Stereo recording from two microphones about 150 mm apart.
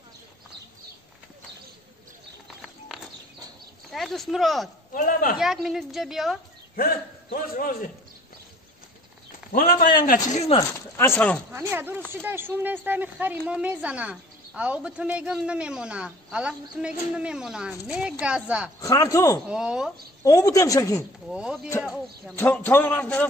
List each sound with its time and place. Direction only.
3.9 s speech: centre (ahead or behind)
4.9 s speech: 65° left (ahead or behind)
5.4 s a woman's voice: centre (ahead or behind)
6.8 s a man's voice: 75° left (ahead or behind)
9.5 s a man's voice: 80° left
10.0 s speech: 55° left (ahead or behind)
10.6 s speech: 15° left (ahead or behind)
11.5 s a woman's voice: 15° right (ahead or behind)
18.8 s speech: 20° left (ahead or behind)
19.4 s a woman's voice: 5° right (ahead or behind)
20.2 s speech: 20° left (ahead or behind)
21.3 s a woman's voice: 5° right (ahead or behind)
22.3 s a man's voice: 15° left (ahead or behind)